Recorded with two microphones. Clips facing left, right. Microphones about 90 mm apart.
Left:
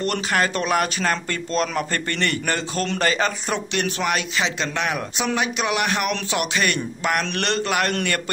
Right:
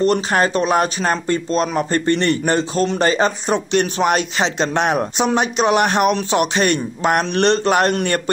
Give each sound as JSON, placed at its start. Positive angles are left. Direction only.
{"t": 0.0, "sound": "speech", "side_deg": -25}